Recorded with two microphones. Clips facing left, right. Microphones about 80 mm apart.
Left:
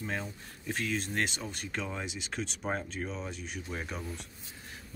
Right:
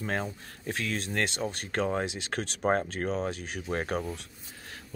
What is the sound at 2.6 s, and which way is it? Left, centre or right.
Speech, right.